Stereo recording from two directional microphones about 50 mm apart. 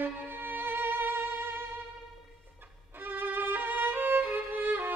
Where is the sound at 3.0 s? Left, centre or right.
Right.